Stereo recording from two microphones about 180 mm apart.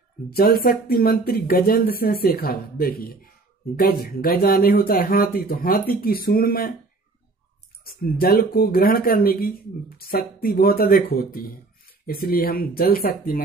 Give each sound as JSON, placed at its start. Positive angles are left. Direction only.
{"t": 0.3, "sound": "speech", "side_deg": 55}
{"t": 7.8, "sound": "speech", "side_deg": 55}